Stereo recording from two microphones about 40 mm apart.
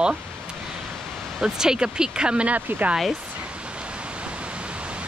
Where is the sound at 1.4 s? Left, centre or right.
Centre.